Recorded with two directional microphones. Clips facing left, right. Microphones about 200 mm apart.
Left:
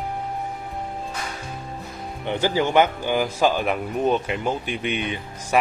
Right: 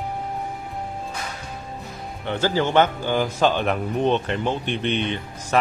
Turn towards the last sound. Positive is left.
turn(degrees=10)  # may be behind; listen again after turning